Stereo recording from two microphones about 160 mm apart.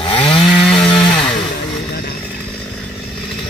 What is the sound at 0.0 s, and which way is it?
Chainsaw, 30° left (ahead or behind).